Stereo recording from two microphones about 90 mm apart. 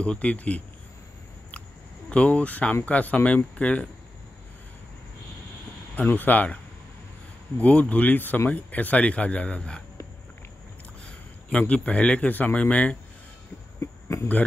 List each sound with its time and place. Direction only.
0.0 s speech: 10° left (ahead or behind)
2.0 s speech: 15° left (ahead or behind)
5.9 s speech: 20° left (ahead or behind)
7.6 s speech: 15° left (ahead or behind)
11.1 s speech: 15° left (ahead or behind)
13.7 s a sound: 30° left (ahead or behind)